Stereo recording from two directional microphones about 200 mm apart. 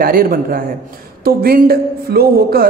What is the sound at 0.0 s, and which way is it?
Speech, 45° right (ahead or behind).